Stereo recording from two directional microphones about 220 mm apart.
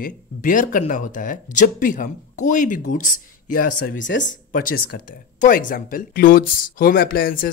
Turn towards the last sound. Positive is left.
turn(degrees=40)  # may be behind; listen again after turning